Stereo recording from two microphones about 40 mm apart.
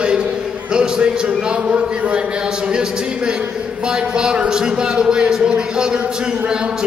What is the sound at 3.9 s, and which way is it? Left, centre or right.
A man's voice, right.